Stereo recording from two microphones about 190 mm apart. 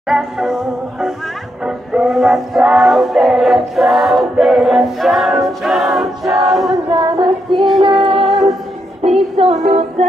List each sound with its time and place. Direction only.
0.1 s music: 5° right (ahead or behind)
6.9 s a sound: 25° right (ahead or behind)
7.8 s music: 30° right (ahead or behind)
8.3 s music: centre (ahead or behind)
9.4 s music: 35° right (ahead or behind)